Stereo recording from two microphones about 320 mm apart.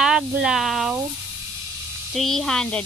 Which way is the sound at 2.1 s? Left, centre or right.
Centre.